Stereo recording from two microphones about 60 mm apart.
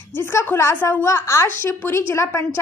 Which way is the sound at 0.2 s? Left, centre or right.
Left.